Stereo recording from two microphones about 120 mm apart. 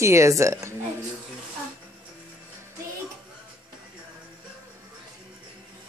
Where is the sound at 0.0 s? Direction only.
25° right (ahead or behind).